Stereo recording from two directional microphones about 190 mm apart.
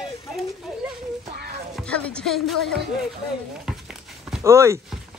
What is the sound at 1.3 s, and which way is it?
Music, 55° right (ahead or behind).